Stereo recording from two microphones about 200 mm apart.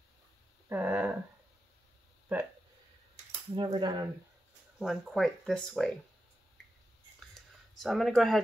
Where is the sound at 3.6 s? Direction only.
25° right (ahead or behind).